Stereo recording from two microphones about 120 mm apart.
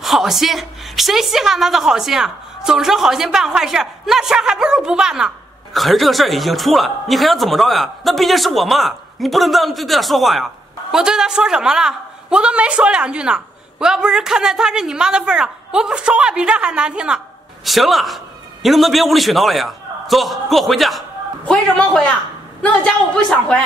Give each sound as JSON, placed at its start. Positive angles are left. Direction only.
{"t": 0.0, "sound": "a woman's voice", "side_deg": 0}